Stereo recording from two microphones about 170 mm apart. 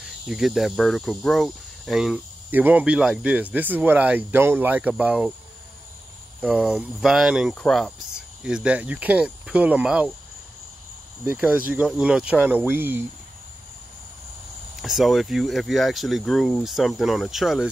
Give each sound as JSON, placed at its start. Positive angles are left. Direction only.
{"t": 0.3, "sound": "speech", "side_deg": 0}
{"t": 6.4, "sound": "speech", "side_deg": -5}
{"t": 8.5, "sound": "speech", "side_deg": -5}
{"t": 11.2, "sound": "speech", "side_deg": -10}
{"t": 14.8, "sound": "speech", "side_deg": 0}